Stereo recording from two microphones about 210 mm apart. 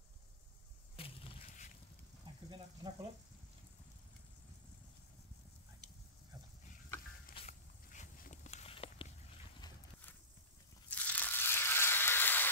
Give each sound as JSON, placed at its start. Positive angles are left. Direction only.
{"t": 1.0, "sound": "a sound", "side_deg": 25}
{"t": 2.5, "sound": "frying", "side_deg": -25}
{"t": 7.3, "sound": "walk", "side_deg": 35}
{"t": 10.9, "sound": "crushing", "side_deg": 5}